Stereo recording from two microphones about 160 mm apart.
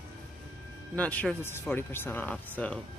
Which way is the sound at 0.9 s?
10° left (ahead or behind).